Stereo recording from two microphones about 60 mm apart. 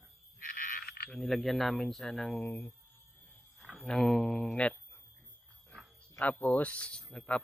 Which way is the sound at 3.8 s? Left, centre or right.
Centre.